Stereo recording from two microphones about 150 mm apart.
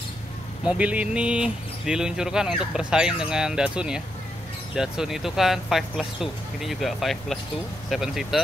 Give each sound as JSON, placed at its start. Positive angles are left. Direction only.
{"t": 0.7, "sound": "speech", "side_deg": -10}